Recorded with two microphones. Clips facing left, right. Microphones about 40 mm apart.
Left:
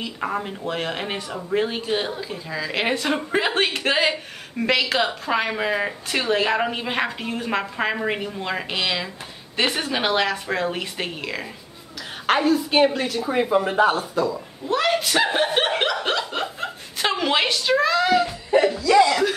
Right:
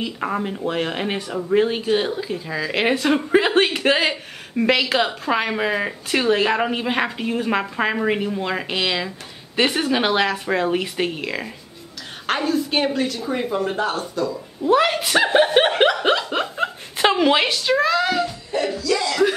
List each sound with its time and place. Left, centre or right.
0.0 s speech: centre
14.6 s a woman's voice: centre
15.8 s chuckle: centre
17.1 s speech: centre
18.8 s speech: left